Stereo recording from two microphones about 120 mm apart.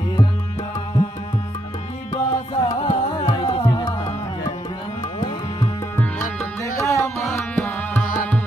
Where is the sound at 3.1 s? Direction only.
35° left (ahead or behind).